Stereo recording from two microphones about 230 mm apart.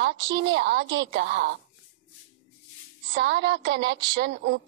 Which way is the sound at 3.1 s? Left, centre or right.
Right.